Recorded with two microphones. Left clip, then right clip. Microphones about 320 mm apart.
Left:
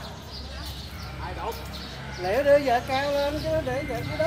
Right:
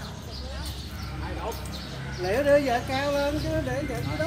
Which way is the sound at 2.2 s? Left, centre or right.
Left.